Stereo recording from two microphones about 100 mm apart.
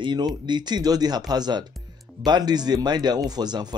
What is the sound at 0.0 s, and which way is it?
Speech, 50° right (ahead or behind).